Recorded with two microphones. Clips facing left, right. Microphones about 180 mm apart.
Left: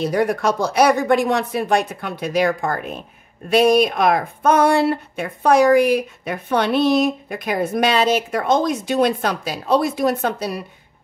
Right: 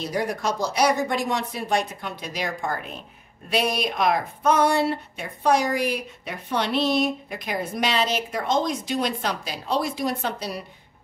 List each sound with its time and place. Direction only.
0.0 s speech: 60° left (ahead or behind)